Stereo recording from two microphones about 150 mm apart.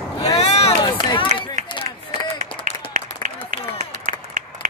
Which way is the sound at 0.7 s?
35° left (ahead or behind).